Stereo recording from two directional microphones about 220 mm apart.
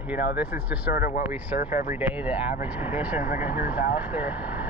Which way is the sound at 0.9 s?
40° left (ahead or behind).